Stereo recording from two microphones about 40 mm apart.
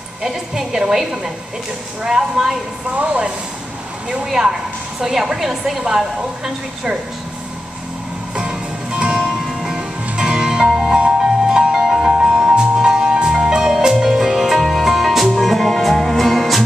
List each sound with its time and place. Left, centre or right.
0.2 s a woman's voice: centre
3.0 s speech: right
4.1 s a woman's voice: centre
8.4 s music: right; by 16.6 s centre